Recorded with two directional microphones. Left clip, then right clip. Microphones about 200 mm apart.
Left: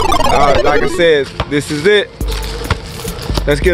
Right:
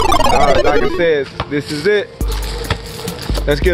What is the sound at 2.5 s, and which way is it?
Music, 45° right (ahead or behind).